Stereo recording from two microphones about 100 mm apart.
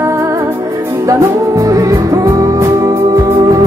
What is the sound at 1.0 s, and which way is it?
Music, 30° right (ahead or behind).